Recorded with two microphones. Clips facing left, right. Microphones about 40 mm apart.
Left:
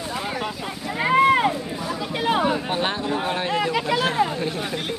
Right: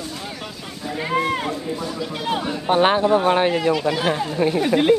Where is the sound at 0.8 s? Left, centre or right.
Centre.